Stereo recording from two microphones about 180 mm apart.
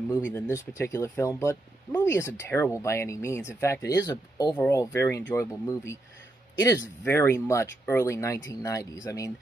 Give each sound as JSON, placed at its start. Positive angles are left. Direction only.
{"t": 0.1, "sound": "speech", "side_deg": 10}